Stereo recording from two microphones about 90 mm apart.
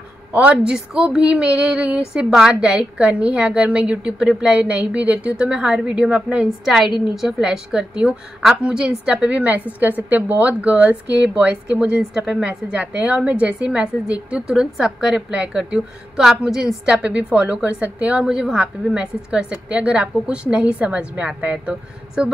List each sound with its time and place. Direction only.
0.3 s a woman's voice: 15° right (ahead or behind)